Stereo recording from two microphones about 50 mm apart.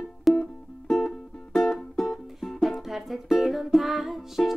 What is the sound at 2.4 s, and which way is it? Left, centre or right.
Music, centre.